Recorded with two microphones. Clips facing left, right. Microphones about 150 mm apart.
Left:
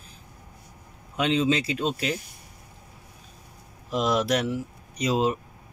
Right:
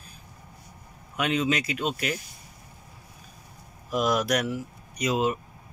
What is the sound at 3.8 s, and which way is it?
Speech, 25° left (ahead or behind).